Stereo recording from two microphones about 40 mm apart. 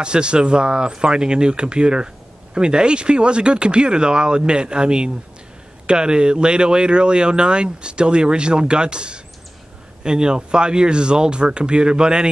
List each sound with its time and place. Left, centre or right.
0.0 s speech: right